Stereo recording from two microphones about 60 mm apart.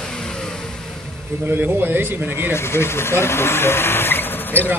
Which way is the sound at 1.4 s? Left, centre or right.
Right.